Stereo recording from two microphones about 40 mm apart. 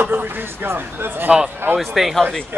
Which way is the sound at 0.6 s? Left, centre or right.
Right.